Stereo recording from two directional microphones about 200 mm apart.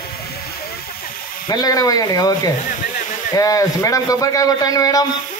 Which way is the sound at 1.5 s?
20° left (ahead or behind).